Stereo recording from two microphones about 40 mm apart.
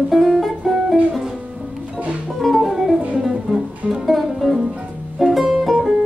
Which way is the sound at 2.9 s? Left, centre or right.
Right.